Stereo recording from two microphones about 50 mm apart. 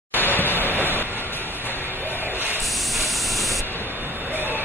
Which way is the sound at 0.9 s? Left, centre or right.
Right.